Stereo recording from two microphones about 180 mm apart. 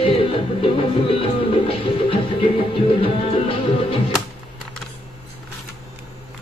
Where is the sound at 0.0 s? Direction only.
30° left (ahead or behind).